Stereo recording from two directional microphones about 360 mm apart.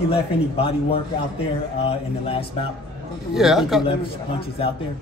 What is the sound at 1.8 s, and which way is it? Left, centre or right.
Speech, centre.